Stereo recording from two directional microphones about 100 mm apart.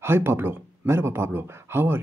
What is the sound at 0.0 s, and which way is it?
Speech, 25° right (ahead or behind).